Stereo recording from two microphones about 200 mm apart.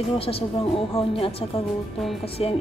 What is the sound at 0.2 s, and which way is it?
Speech, 30° left (ahead or behind).